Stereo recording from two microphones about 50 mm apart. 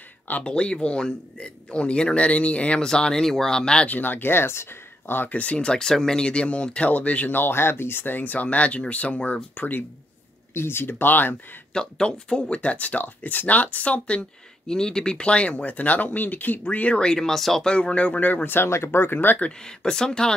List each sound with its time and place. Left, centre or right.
0.4 s a man's voice: centre
2.8 s speech: centre
3.8 s speech: left
5.4 s a man's voice: left
7.3 s speech: left
10.5 s speech: left
11.7 s speech: centre
12.5 s a man's voice: left
14.7 s a man's voice: centre; by 16.6 s left
16.6 s a man's voice: left
17.0 s speech: centre
17.6 s a man's voice: centre; by 18.7 s left
18.7 s speech: left
19.6 s speech: centre